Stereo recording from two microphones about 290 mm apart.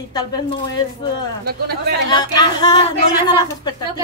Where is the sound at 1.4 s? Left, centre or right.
Right.